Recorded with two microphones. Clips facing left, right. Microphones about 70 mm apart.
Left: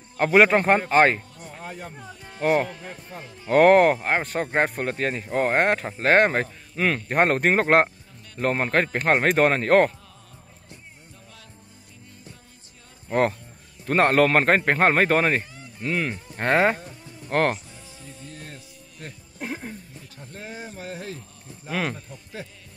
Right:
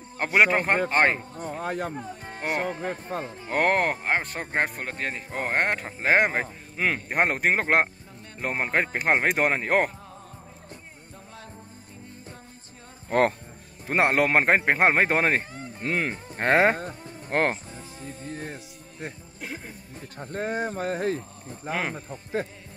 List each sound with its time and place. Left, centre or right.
0.2 s speech: centre
1.3 s a sound: right
1.6 s speech: right
2.0 s speech: right
2.8 s speech: right
3.4 s a man's voice: centre
13.8 s a man's voice: centre
17.3 s music: right
20.0 s a man's voice: right